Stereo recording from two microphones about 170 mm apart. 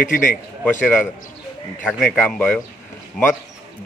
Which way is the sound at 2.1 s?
10° left (ahead or behind).